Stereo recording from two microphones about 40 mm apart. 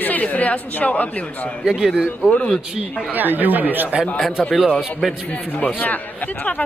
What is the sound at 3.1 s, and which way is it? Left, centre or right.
Speech, right.